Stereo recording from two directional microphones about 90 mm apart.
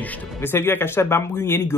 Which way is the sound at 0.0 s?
15° left (ahead or behind).